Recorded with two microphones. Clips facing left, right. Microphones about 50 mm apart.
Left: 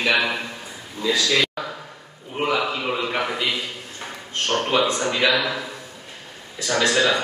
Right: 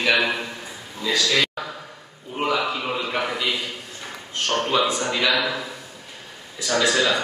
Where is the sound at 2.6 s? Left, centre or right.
Centre.